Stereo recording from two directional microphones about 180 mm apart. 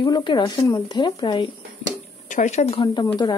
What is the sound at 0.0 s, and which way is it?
Speech, 25° left (ahead or behind).